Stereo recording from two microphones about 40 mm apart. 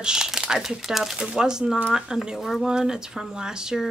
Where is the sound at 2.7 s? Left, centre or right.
Centre.